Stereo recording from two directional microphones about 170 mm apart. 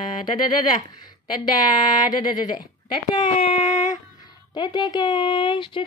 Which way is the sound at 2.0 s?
25° left (ahead or behind).